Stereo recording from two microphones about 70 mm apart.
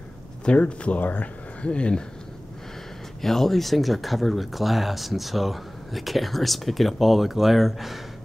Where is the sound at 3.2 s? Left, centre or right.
Centre.